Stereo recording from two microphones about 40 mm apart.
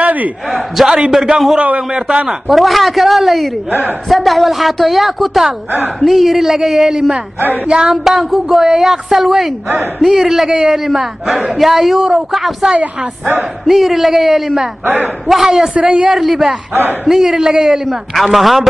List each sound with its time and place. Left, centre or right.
0.0 s a sound: right
0.5 s a woman's voice: centre
1.6 s a man's voice: right
2.2 s a woman's voice: centre
7.6 s a man's voice: centre
7.9 s a woman's voice: centre
13.7 s a woman's voice: centre
15.7 s a man's voice: right
16.1 s a woman's voice: centre